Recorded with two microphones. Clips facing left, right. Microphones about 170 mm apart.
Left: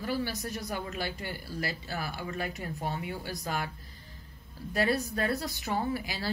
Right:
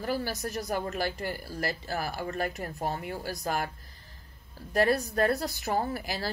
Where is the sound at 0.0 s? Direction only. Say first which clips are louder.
Right 1 dB; 45° right (ahead or behind).